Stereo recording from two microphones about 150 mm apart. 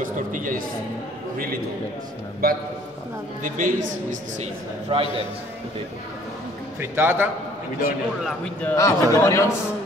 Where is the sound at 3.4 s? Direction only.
60° right (ahead or behind).